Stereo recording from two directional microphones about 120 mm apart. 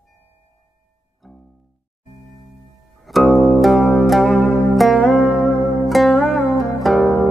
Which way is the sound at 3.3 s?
15° left (ahead or behind).